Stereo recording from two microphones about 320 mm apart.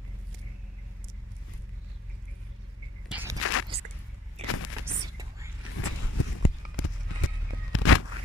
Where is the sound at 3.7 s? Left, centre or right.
Centre.